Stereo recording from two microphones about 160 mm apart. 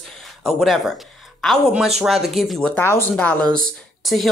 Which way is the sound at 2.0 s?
Centre (ahead or behind).